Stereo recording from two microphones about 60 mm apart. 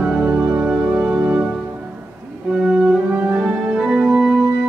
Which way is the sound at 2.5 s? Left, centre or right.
Centre.